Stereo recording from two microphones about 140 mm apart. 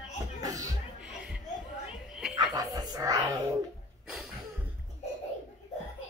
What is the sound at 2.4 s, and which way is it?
Chuckle, 30° right (ahead or behind).